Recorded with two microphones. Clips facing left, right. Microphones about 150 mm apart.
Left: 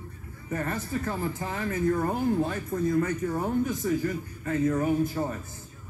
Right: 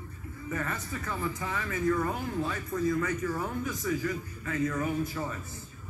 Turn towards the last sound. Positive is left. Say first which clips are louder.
# left 6 dB
turn(degrees=40)  # may be behind; listen again after turning